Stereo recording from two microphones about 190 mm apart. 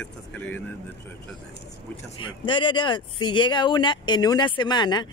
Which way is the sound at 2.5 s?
25° left (ahead or behind).